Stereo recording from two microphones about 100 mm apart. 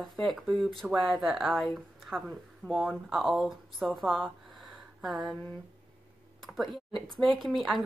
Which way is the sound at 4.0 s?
Centre (ahead or behind).